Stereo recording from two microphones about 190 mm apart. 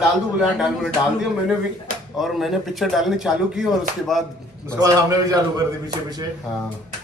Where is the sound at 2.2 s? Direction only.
Centre (ahead or behind).